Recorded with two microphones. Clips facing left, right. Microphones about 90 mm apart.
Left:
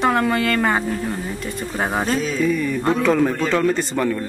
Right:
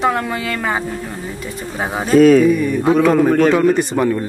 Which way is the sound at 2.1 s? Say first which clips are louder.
Right 14 dB; 65° right (ahead or behind).